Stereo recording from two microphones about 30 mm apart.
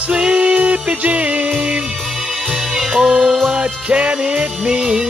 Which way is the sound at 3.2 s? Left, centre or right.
Centre.